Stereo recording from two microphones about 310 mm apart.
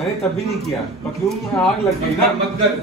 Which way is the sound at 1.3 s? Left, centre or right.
Centre.